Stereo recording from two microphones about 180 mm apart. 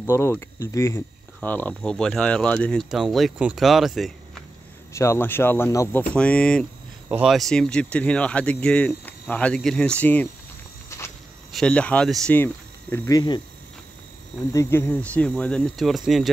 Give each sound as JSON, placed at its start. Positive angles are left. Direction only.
{"t": 0.0, "sound": "speech", "side_deg": 15}
{"t": 4.9, "sound": "speech", "side_deg": 15}
{"t": 11.5, "sound": "speech", "side_deg": 5}
{"t": 12.9, "sound": "speech", "side_deg": 20}
{"t": 14.5, "sound": "speech", "side_deg": 15}